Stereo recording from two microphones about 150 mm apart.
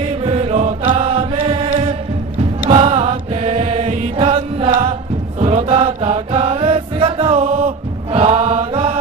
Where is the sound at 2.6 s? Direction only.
45° right (ahead or behind).